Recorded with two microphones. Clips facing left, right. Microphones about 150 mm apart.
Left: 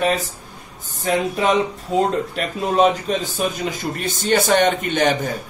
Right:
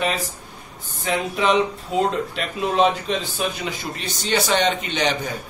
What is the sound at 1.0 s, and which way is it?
Speech, 45° left (ahead or behind).